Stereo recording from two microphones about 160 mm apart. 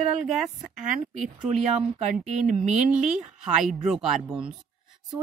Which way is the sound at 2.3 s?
50° right (ahead or behind).